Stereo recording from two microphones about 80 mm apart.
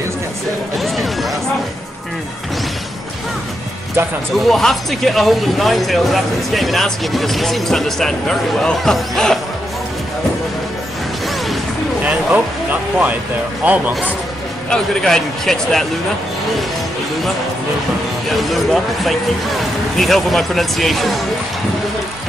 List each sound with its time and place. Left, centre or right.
0.7 s a sound: centre
4.3 s speech: centre
12.0 s a sound: centre
13.6 s speech: centre
14.7 s speech: centre
18.5 s speech: centre